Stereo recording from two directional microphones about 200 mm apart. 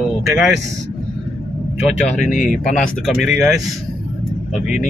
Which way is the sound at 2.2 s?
40° left (ahead or behind).